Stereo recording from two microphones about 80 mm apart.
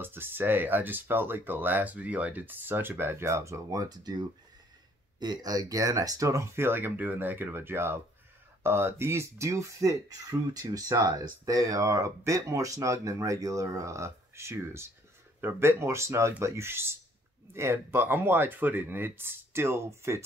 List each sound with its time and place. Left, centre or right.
0.0 s speech: right
3.9 s speech: right